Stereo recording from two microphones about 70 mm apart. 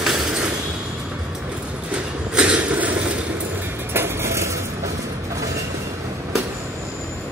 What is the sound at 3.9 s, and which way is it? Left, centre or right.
Vehicle, right.